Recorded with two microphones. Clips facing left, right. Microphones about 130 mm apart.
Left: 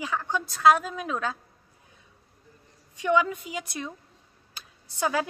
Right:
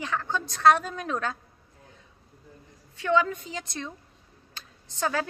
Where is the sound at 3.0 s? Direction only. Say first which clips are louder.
Even; 15° left (ahead or behind).